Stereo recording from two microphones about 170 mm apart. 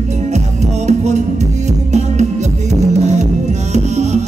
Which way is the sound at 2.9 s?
40° right (ahead or behind).